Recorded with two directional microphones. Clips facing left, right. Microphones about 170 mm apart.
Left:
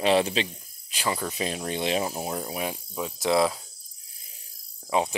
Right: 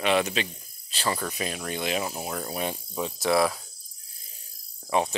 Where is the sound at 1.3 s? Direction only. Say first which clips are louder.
Left 2 dB; 25° left (ahead or behind).